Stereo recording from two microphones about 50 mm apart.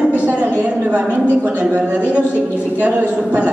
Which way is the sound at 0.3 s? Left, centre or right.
Right.